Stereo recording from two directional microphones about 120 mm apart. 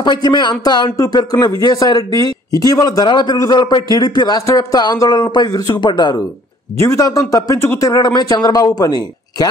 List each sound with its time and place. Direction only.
0.0 s a man's voice: 40° left (ahead or behind)
6.8 s a man's voice: 25° left (ahead or behind)